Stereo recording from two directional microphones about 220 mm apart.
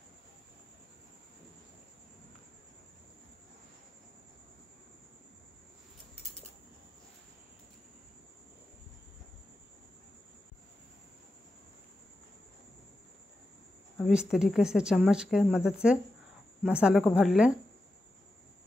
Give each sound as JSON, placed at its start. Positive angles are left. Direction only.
{"t": 13.9, "sound": "speech", "side_deg": 0}